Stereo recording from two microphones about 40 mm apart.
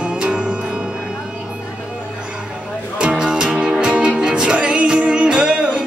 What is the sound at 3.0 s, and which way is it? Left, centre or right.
Music, right.